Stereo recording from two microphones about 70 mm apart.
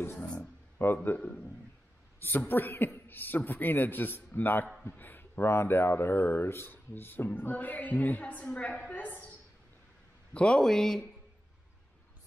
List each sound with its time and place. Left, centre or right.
0.0 s speech: left
2.1 s a woman's voice: left
10.3 s a woman's voice: centre